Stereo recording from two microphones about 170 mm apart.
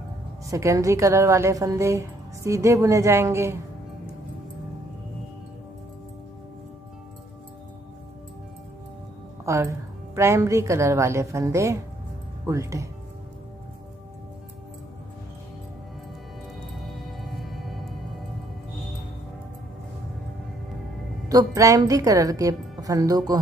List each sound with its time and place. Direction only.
0.5 s a woman's voice: 20° right (ahead or behind)
9.5 s a woman's voice: 15° right (ahead or behind)
16.8 s music: centre (ahead or behind)
21.3 s a woman's voice: 20° right (ahead or behind)